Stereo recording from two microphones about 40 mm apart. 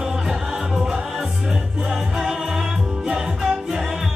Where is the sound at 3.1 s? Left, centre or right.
Centre.